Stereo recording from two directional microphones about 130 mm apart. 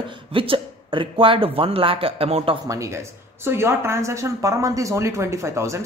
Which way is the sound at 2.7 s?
25° right (ahead or behind).